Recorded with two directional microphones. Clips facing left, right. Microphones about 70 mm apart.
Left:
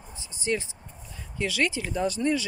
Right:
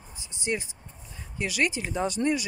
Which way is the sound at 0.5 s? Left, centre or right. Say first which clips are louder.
Left 2 dB; right.